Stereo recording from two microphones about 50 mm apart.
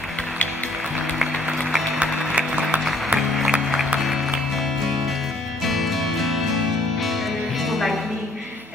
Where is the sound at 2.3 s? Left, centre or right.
Right.